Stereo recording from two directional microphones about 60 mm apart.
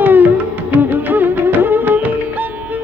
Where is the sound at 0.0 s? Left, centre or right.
Right.